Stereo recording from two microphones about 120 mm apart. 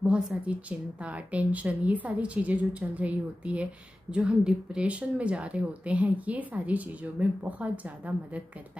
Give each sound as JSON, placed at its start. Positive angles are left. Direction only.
{"t": 0.0, "sound": "speech", "side_deg": -10}